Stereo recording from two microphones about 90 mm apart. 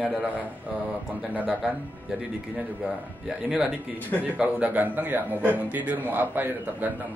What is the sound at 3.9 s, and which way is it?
Speech, 20° left (ahead or behind).